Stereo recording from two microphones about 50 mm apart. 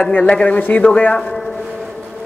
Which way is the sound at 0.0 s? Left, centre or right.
Left.